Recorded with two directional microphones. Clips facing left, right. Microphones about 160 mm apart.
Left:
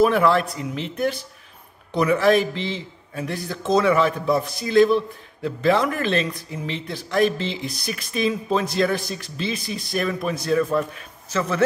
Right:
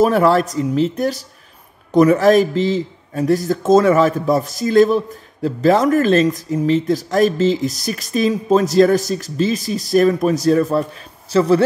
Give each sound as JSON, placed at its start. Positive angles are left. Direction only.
{"t": 0.0, "sound": "speech", "side_deg": -40}